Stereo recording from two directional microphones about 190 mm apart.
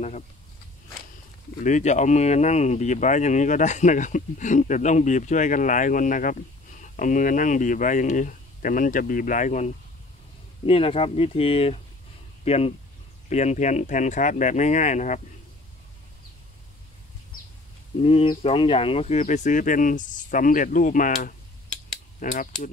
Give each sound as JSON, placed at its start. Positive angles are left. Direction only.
{"t": 1.6, "sound": "speech", "side_deg": 40}
{"t": 10.7, "sound": "speech", "side_deg": 30}
{"t": 18.0, "sound": "speech", "side_deg": 30}